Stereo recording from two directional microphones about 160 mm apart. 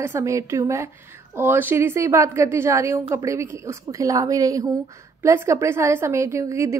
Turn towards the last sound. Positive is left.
turn(degrees=-20)  # may be behind; listen again after turning